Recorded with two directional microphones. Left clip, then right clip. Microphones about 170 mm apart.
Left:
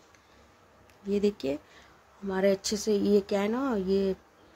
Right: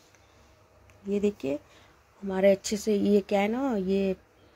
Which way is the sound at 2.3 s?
10° right (ahead or behind).